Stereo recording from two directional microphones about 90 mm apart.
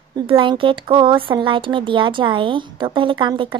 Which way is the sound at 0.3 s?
70° right (ahead or behind).